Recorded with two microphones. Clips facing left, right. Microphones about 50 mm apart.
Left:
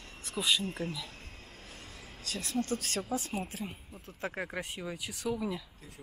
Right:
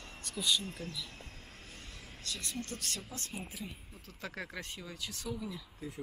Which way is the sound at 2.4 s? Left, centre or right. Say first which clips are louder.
Left 10 dB; left.